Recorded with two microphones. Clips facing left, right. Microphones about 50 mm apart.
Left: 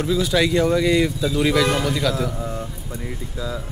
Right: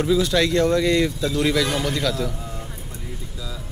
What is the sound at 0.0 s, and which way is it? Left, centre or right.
Speech, centre.